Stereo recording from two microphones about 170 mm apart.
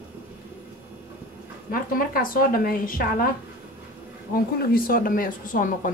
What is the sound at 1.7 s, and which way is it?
Speech, 55° left (ahead or behind).